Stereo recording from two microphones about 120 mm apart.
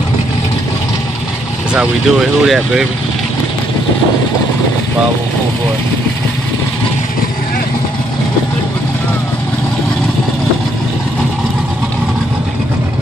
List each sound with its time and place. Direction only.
1.7 s speech: 5° right (ahead or behind)